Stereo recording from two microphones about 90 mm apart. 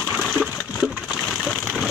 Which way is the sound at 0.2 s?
5° left (ahead or behind).